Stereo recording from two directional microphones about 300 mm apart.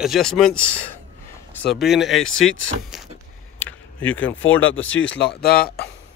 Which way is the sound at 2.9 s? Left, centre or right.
Centre.